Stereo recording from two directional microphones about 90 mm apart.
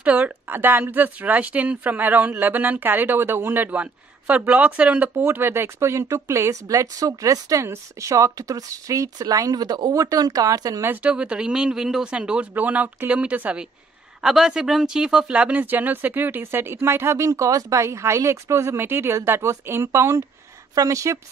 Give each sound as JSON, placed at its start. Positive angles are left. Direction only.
{"t": 0.0, "sound": "speech", "side_deg": -15}
{"t": 10.8, "sound": "speech", "side_deg": -25}
{"t": 11.1, "sound": "speech", "side_deg": -10}